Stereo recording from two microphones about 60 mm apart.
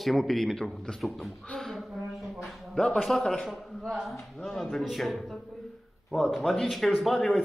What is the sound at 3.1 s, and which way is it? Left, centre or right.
A man's voice, centre.